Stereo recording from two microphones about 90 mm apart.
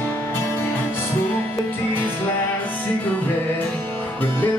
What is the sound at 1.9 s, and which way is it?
Music, 20° left (ahead or behind).